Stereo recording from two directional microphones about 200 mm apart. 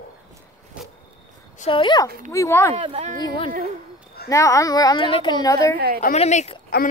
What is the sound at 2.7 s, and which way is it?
Speech, 30° right (ahead or behind).